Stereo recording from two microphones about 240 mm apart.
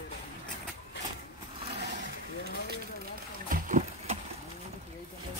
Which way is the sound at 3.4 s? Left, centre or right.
Right.